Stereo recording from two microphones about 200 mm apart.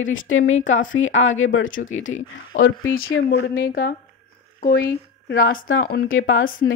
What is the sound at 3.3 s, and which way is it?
Speech, 50° left (ahead or behind).